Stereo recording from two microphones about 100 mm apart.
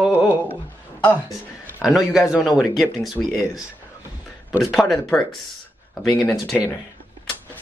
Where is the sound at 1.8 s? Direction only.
5° right (ahead or behind).